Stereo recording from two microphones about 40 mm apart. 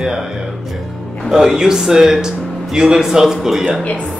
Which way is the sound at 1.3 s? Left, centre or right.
Centre.